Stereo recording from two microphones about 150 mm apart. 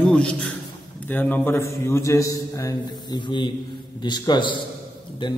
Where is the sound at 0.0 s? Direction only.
5° left (ahead or behind).